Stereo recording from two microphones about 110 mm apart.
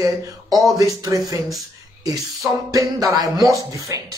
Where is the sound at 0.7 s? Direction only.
30° right (ahead or behind).